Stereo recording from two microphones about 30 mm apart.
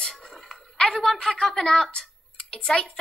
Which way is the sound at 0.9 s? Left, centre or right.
Centre.